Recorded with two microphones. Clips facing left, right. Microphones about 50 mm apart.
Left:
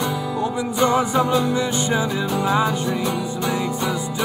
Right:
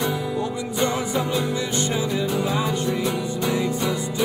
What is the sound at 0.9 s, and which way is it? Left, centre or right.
Music, left.